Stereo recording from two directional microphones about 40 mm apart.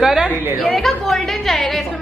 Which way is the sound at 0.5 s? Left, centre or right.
Centre.